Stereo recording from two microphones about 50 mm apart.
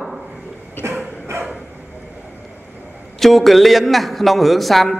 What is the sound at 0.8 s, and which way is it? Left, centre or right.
Vehicle, left.